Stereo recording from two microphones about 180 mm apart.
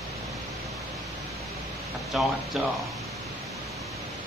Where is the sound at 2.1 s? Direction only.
Centre (ahead or behind).